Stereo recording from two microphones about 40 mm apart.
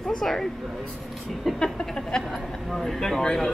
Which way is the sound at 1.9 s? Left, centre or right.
Centre.